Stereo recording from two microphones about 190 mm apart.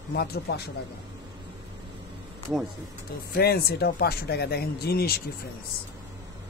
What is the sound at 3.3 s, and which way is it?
Speech, 55° left (ahead or behind).